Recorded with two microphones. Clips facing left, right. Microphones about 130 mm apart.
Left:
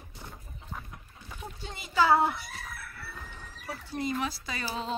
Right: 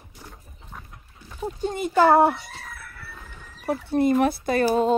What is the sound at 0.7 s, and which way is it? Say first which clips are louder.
Pig: left 1 dB; 5° left (ahead or behind).